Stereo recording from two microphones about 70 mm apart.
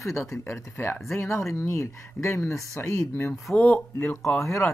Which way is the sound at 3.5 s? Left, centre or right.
Left.